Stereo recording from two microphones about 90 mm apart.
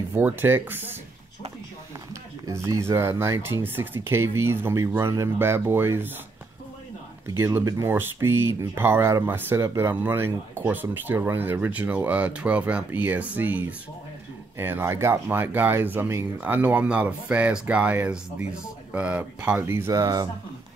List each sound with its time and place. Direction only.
0.1 s speech: 20° right (ahead or behind)
2.4 s speech: 35° right (ahead or behind)
7.3 s speech: 30° right (ahead or behind)
19.6 s speech: 30° right (ahead or behind)
19.9 s speech: 45° right (ahead or behind)